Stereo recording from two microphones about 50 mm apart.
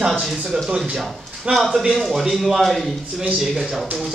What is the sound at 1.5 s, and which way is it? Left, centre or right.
A man's voice, centre.